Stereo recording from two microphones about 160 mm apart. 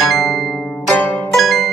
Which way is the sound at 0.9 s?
Centre (ahead or behind).